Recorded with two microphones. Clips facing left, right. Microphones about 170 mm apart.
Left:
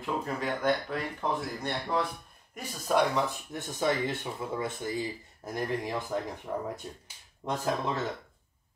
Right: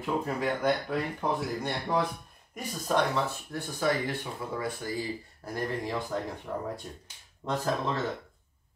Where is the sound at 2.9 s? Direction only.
15° left (ahead or behind).